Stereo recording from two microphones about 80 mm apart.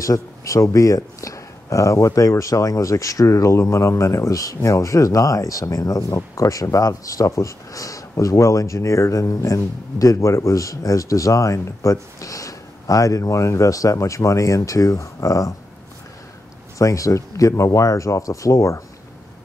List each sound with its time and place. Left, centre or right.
0.0 s speech: left
16.7 s speech: left